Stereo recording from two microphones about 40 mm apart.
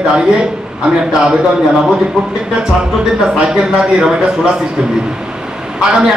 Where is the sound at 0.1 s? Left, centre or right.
Centre.